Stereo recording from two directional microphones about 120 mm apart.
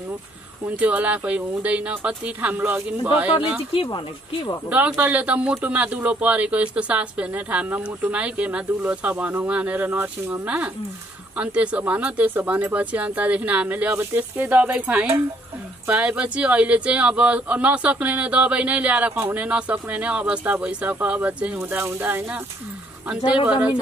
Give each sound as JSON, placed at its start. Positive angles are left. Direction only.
{"t": 0.7, "sound": "speech", "side_deg": -10}
{"t": 3.7, "sound": "speech", "side_deg": 45}
{"t": 4.6, "sound": "speech", "side_deg": -10}